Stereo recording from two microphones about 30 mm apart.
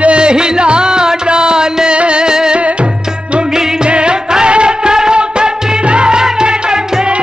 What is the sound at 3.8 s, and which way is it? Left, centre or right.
Music, right.